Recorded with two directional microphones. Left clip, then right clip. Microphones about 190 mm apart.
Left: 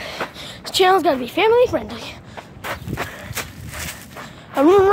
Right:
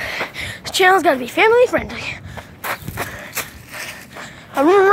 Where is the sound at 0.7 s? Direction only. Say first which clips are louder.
Right 2 dB; centre (ahead or behind).